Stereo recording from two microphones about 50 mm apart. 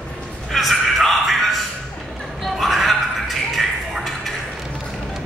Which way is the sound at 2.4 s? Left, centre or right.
Centre.